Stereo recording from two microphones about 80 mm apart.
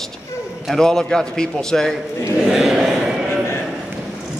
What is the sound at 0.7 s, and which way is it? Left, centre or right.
A man's voice, centre.